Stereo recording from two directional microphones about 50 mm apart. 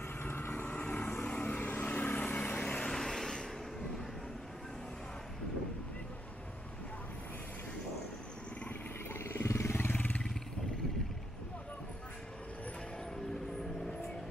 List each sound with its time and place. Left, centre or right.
0.2 s vehicle: left
0.5 s vehicle: left
1.6 s vehicle: left
1.9 s vehicle: left
2.8 s vehicle: centre
9.1 s vehicle: left
9.9 s vehicle: left